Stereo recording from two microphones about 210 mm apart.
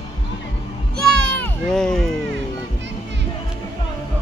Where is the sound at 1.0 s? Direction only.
5° left (ahead or behind).